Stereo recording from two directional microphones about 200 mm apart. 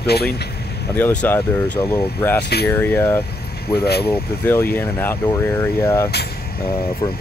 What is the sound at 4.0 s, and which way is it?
Speech, 10° left (ahead or behind).